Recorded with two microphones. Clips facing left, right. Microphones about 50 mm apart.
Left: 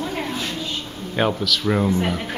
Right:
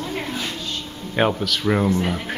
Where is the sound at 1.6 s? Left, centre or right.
Centre.